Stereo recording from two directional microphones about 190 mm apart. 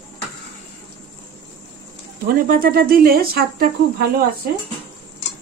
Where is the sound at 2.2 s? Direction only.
50° right (ahead or behind).